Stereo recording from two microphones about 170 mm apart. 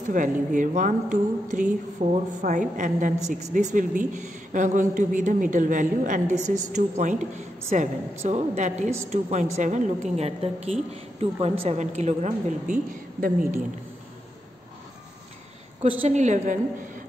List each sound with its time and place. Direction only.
0.1 s a woman's voice: 50° right (ahead or behind)
16.0 s a woman's voice: 45° right (ahead or behind)